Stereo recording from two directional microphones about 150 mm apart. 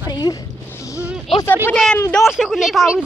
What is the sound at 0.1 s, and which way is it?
Speech, 25° left (ahead or behind).